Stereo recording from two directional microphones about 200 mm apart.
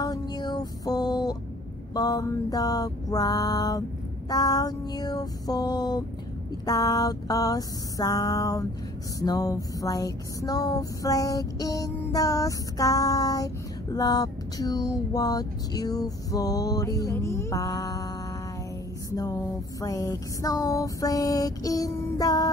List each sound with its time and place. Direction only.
0.0 s music: 20° left (ahead or behind)
2.0 s mantra: 20° left (ahead or behind)
6.6 s a sound: 20° left (ahead or behind)